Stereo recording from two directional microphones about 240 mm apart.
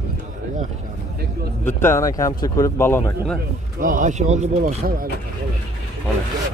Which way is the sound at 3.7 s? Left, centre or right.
Right.